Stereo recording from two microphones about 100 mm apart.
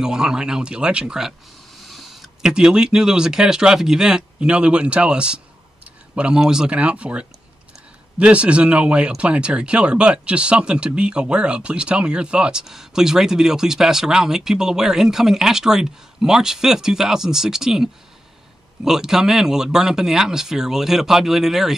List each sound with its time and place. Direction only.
0.0 s speech: 5° right (ahead or behind)
18.9 s speech: 5° right (ahead or behind)